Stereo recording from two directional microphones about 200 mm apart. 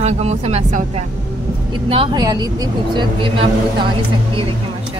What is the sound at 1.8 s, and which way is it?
Speech, 25° right (ahead or behind).